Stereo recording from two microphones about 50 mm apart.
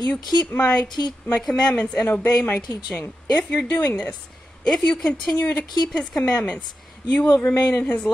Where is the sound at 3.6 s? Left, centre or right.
Left.